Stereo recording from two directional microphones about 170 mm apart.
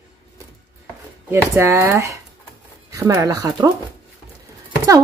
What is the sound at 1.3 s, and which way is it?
Speech, 15° right (ahead or behind).